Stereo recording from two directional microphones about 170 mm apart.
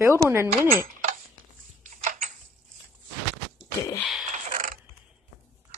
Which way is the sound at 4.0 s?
Centre (ahead or behind).